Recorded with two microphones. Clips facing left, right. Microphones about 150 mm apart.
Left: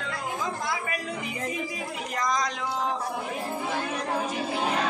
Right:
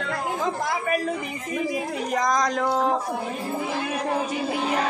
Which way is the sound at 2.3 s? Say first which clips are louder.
Right 6 dB; 45° right (ahead or behind).